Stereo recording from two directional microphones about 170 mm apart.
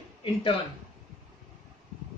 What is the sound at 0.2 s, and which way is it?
Speech, 30° left (ahead or behind).